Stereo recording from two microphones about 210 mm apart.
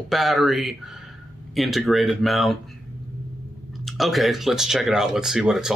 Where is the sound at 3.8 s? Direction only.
Centre (ahead or behind).